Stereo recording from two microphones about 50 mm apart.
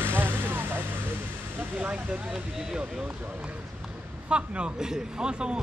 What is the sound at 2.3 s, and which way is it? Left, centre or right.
Speech, centre.